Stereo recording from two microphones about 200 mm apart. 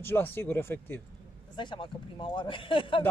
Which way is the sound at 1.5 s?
25° left (ahead or behind).